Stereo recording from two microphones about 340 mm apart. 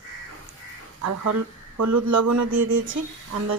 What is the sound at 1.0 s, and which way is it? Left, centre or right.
Speech, right.